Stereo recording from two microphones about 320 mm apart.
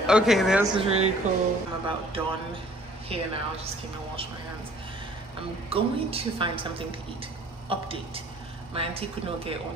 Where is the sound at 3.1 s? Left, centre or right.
Centre.